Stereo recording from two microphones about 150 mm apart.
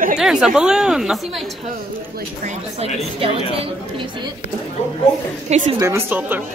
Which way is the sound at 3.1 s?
40° right (ahead or behind).